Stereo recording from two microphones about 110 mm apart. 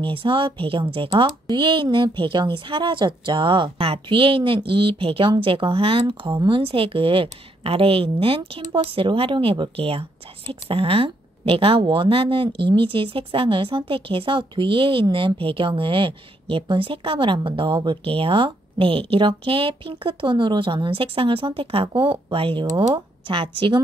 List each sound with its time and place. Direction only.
0.0 s speech: 50° right (ahead or behind)
1.1 s speech: 40° right (ahead or behind)